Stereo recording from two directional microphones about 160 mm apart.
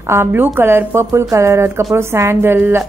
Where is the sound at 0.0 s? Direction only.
15° right (ahead or behind).